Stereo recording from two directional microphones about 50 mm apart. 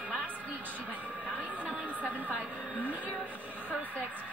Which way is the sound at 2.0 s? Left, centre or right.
Right.